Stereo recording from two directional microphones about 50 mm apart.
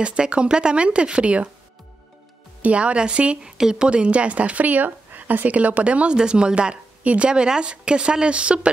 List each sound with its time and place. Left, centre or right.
0.0 s speech: right
2.6 s speech: right